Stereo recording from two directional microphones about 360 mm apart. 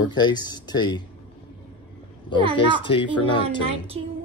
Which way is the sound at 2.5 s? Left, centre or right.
Centre.